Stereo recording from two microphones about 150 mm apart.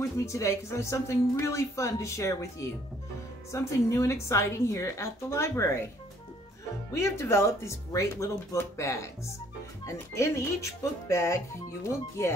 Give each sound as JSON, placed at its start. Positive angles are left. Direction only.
{"t": 0.0, "sound": "speech", "side_deg": 20}
{"t": 6.9, "sound": "speech", "side_deg": 20}